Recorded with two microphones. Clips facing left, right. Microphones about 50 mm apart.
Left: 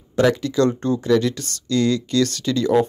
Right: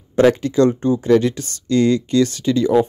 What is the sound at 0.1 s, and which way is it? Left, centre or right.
Speech, right.